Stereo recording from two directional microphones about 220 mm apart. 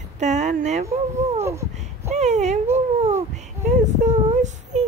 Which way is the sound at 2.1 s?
30° right (ahead or behind).